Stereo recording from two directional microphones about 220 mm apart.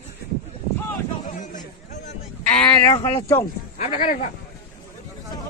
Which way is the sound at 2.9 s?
20° left (ahead or behind).